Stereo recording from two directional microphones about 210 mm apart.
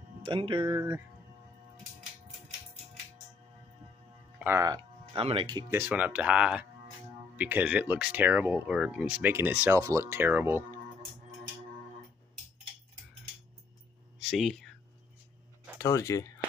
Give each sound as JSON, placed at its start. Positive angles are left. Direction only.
{"t": 0.2, "sound": "speech", "side_deg": -25}
{"t": 4.4, "sound": "speech", "side_deg": -10}
{"t": 14.3, "sound": "speech", "side_deg": 0}
{"t": 15.8, "sound": "speech", "side_deg": 15}